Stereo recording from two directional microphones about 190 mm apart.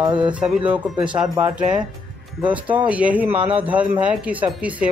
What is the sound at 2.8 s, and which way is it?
Speech, 5° right (ahead or behind).